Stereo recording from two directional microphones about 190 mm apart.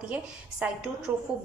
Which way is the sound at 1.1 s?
20° right (ahead or behind).